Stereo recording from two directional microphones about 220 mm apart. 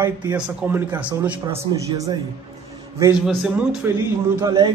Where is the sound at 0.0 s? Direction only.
10° right (ahead or behind).